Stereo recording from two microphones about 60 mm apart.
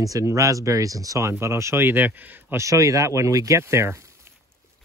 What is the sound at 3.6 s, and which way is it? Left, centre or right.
Speech, right.